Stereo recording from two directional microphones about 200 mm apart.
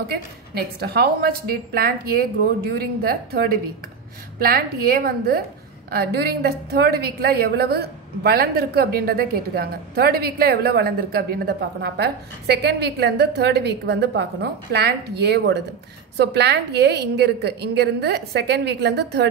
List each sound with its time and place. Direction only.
0.1 s a woman's voice: 55° right (ahead or behind)